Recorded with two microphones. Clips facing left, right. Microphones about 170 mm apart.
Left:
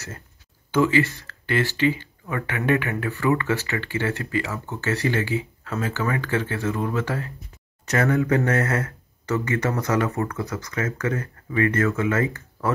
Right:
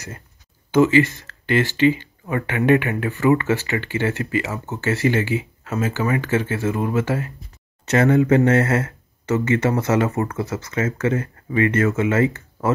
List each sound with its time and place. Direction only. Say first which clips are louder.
0.7 s speech: right 5 dB; 20° right (ahead or behind)